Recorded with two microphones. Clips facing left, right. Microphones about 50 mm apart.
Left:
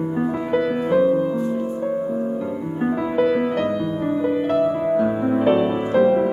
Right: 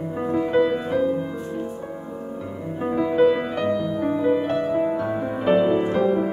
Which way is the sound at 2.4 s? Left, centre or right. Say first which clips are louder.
Left 5 dB; centre.